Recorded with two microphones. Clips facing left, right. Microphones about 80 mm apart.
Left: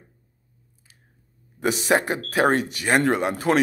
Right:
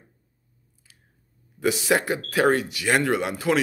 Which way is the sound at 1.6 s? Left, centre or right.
Left.